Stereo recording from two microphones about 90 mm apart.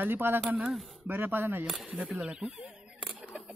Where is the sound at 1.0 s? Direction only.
20° right (ahead or behind).